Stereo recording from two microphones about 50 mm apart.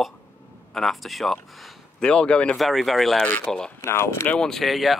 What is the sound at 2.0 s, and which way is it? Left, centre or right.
Speech, centre.